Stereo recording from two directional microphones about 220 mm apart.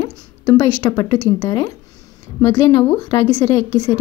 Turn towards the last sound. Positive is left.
turn(degrees=15)  # may be behind; listen again after turning